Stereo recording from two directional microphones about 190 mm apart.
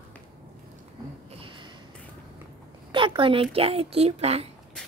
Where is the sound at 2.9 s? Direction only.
25° right (ahead or behind).